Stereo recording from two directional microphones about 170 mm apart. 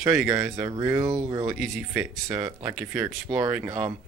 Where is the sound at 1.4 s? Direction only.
Centre (ahead or behind).